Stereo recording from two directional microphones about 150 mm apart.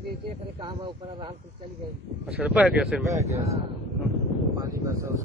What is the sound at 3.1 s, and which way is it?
Speech, 20° right (ahead or behind).